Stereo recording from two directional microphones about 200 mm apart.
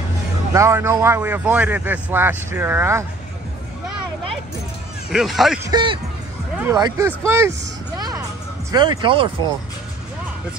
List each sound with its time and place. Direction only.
0.6 s a man's voice: 15° right (ahead or behind)
5.1 s speech: centre (ahead or behind)
5.6 s a man's voice: 20° right (ahead or behind)
8.7 s speech: 25° right (ahead or behind)